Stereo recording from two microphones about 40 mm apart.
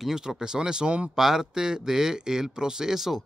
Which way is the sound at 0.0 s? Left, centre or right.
Centre.